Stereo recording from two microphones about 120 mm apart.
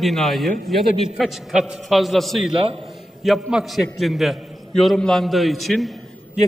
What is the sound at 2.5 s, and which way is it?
Speech, 50° right (ahead or behind).